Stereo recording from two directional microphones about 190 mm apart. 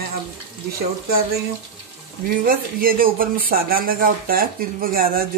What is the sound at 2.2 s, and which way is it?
Speech, 50° right (ahead or behind).